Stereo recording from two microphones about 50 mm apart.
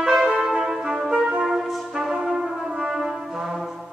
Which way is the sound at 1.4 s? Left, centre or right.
Centre.